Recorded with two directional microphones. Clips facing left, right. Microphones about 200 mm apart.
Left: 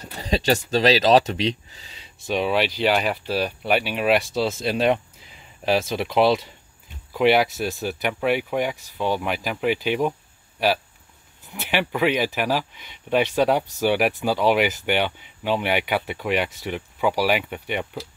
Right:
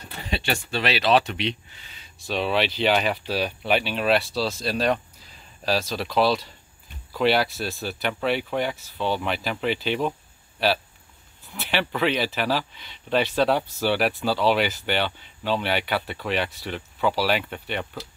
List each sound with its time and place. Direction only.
0.2 s speech: 40° left (ahead or behind)
1.8 s a sound: 30° left (ahead or behind)
2.2 s speech: 10° left (ahead or behind)